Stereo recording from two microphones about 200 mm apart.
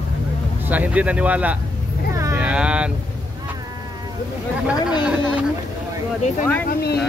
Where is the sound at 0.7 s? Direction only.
5° right (ahead or behind).